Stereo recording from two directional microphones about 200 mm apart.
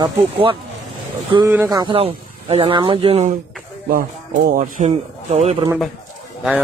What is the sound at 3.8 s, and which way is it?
A man's voice, 45° right (ahead or behind).